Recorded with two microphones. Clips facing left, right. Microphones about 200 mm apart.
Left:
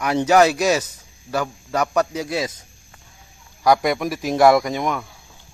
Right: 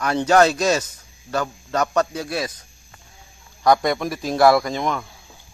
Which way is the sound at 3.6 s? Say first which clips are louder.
Even; 10° left (ahead or behind).